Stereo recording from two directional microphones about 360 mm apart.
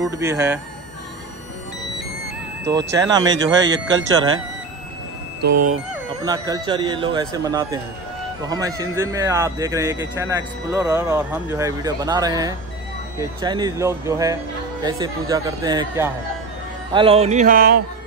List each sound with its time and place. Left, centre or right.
0.0 s speech: centre
2.9 s speech: centre
5.4 s music: right
6.2 s speech: centre
16.9 s music: centre